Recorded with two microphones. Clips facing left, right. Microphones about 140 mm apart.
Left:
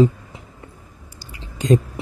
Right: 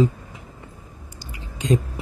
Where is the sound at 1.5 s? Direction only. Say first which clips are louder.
Left 4 dB; 35° left (ahead or behind).